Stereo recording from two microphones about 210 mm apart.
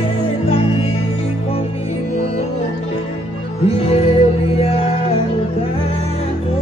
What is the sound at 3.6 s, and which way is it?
Music, 30° left (ahead or behind).